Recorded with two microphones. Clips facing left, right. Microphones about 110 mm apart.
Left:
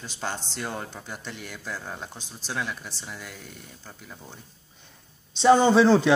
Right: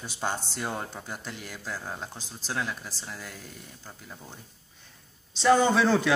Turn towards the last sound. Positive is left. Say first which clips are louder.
# left 4 dB
turn(degrees=15)  # may be behind; listen again after turning